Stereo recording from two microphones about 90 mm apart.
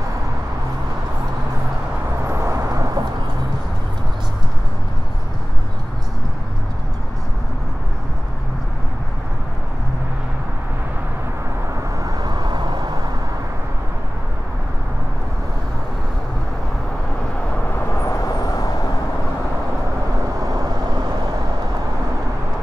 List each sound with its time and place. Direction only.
2.2 s vehicle: 35° right (ahead or behind)
12.0 s vehicle: 50° right (ahead or behind)
18.0 s vehicle: 40° left (ahead or behind)
20.4 s vehicle: 45° right (ahead or behind)